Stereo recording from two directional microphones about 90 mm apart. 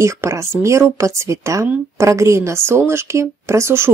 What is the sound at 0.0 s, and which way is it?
Speech, 30° right (ahead or behind).